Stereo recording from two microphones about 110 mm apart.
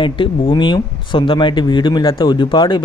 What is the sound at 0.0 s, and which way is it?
Speech, 50° left (ahead or behind).